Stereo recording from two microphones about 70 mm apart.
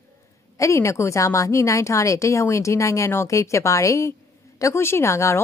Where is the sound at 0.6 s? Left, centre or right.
Left.